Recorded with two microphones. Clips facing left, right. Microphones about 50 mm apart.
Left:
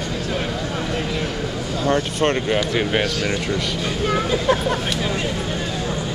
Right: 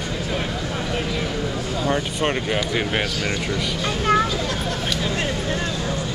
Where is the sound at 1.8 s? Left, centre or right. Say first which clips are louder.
Left 4 dB; centre.